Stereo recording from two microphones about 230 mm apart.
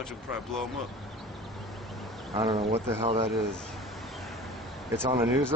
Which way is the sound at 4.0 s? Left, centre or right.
Centre.